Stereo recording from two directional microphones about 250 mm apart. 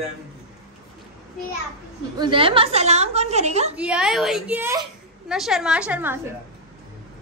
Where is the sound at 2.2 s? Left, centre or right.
Right.